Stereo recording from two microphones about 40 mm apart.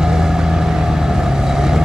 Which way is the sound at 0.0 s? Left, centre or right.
Centre.